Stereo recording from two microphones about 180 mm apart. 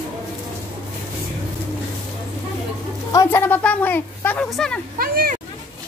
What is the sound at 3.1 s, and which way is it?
A woman's voice, 15° left (ahead or behind).